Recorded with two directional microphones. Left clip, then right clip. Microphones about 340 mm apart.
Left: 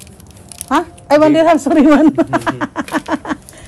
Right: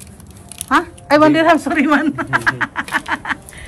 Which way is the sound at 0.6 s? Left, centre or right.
Centre.